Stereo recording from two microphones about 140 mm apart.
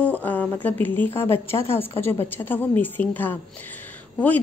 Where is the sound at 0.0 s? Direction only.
10° left (ahead or behind).